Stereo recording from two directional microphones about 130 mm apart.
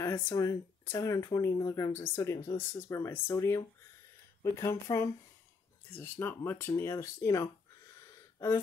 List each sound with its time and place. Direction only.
0.0 s speech: 20° left (ahead or behind)